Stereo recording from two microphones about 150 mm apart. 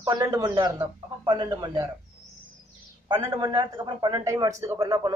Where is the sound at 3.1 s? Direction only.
15° right (ahead or behind).